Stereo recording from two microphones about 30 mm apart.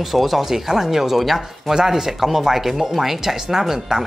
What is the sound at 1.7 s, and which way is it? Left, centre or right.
Speech, centre.